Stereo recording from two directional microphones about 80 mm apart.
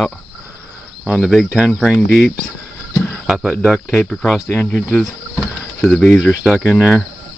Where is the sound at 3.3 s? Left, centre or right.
Centre.